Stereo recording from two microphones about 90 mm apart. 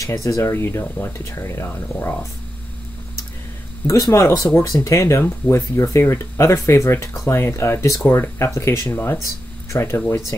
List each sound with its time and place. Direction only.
0.0 s speech: 35° left (ahead or behind)
3.8 s speech: 35° left (ahead or behind)